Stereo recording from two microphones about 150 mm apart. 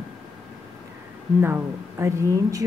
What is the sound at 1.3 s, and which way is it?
Speech, 15° right (ahead or behind).